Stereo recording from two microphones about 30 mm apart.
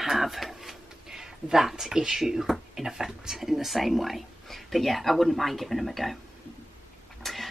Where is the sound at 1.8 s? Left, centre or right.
Right.